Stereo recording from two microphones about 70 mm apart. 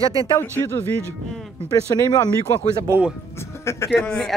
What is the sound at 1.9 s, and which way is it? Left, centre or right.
Speech, left.